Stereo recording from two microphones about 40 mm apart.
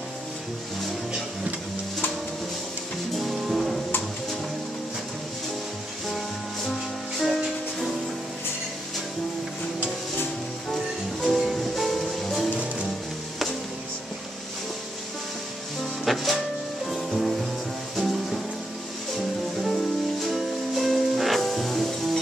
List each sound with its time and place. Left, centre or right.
3.2 s music: centre
6.0 s music: centre
11.2 s music: centre
12.4 s music: right
16.1 s music: centre
19.1 s music: centre